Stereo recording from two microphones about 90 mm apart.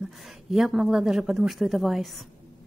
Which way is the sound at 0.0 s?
5° right (ahead or behind).